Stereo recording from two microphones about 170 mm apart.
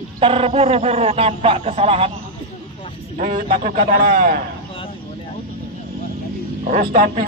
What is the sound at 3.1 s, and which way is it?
A man's voice, 50° right (ahead or behind).